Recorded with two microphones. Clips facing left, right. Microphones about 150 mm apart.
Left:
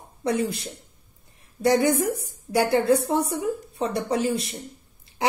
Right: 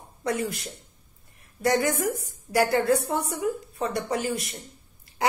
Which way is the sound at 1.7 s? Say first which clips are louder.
Left 4 dB; 25° left (ahead or behind).